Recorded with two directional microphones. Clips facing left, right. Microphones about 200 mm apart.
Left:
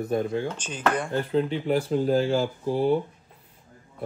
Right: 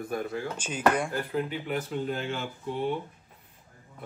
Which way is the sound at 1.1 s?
25° left (ahead or behind).